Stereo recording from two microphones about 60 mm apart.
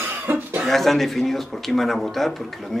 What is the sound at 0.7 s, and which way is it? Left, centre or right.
Speech, centre.